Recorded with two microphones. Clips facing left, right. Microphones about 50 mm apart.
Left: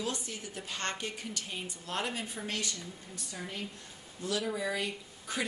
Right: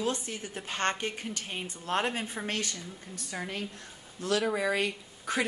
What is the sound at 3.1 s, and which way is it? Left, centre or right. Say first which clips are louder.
Speech: right 5 dB; right.